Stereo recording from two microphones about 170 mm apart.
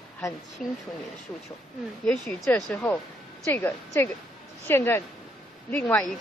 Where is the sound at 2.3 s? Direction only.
5° left (ahead or behind).